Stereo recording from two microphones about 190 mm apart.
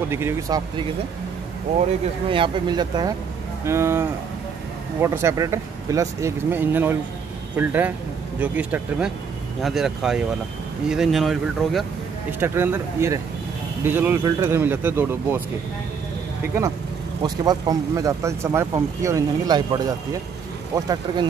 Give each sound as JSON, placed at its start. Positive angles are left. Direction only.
{"t": 0.1, "sound": "speech", "side_deg": -15}
{"t": 2.3, "sound": "speech", "side_deg": -25}
{"t": 12.3, "sound": "speech", "side_deg": -10}
{"t": 17.2, "sound": "speech", "side_deg": -20}